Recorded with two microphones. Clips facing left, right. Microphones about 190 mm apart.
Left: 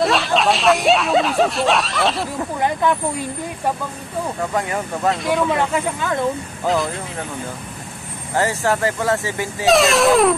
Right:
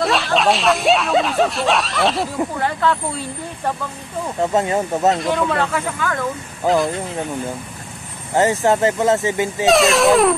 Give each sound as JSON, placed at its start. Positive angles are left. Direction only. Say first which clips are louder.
{"t": 0.0, "sound": "speech", "louder": "even", "side_deg": 0}
{"t": 2.6, "sound": "speech", "louder": "left 4 dB", "side_deg": 15}
{"t": 4.6, "sound": "speech", "louder": "right 6 dB", "side_deg": -25}
{"t": 5.1, "sound": "speech", "louder": "even", "side_deg": 0}
{"t": 6.6, "sound": "speech", "louder": "right 3 dB", "side_deg": 0}
{"t": 8.4, "sound": "speech", "louder": "right 4 dB", "side_deg": -20}
{"t": 9.7, "sound": "speech", "louder": "even", "side_deg": 0}